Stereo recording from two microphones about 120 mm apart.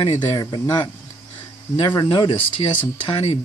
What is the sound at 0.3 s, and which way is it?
Speech, 35° left (ahead or behind).